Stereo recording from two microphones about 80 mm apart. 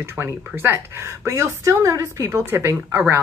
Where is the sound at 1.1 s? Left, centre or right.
Right.